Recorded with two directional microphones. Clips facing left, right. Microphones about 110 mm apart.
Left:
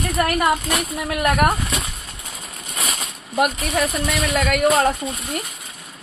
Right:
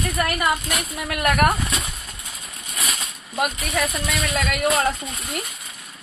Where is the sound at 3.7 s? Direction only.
30° left (ahead or behind).